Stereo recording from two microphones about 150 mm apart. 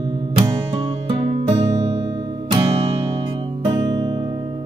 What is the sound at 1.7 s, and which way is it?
Music, 20° right (ahead or behind).